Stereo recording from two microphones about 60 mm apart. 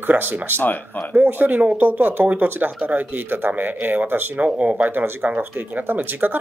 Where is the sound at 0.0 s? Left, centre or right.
Right.